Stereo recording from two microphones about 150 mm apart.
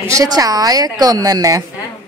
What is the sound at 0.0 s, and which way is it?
A woman's voice, 20° right (ahead or behind).